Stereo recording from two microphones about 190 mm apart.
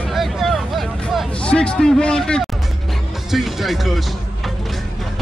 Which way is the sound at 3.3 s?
Centre (ahead or behind).